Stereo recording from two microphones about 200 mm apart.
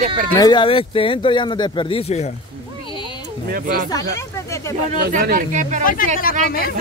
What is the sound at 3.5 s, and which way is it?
Speech, 45° right (ahead or behind).